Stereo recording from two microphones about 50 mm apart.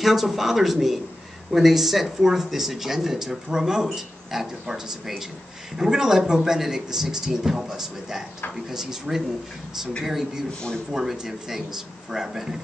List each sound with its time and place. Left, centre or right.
0.0 s speech: centre